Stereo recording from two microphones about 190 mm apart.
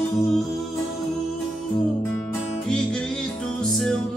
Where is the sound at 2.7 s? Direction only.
5° left (ahead or behind).